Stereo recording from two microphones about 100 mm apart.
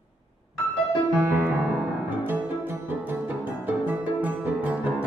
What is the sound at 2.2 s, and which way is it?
Music, 20° right (ahead or behind).